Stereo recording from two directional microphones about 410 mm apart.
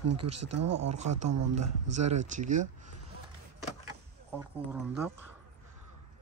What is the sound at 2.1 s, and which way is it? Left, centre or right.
Speech, centre.